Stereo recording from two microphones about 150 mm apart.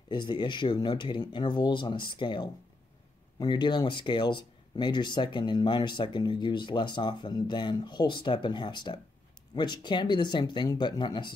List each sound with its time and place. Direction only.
0.1 s speech: 30° left (ahead or behind)